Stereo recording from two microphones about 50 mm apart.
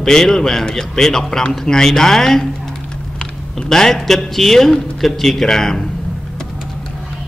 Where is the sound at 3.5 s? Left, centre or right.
Centre.